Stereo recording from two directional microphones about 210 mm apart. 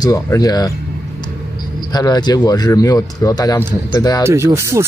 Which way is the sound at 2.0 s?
20° left (ahead or behind).